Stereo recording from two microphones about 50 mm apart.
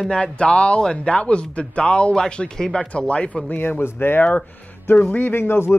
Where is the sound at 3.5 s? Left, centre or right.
Left.